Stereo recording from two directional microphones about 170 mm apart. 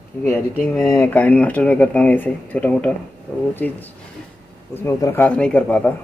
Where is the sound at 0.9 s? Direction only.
10° left (ahead or behind).